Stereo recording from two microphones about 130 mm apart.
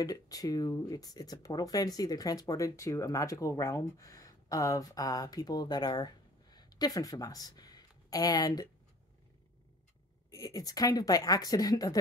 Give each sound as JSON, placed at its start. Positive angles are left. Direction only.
{"t": 0.0, "sound": "speech", "side_deg": 30}
{"t": 10.3, "sound": "speech", "side_deg": 30}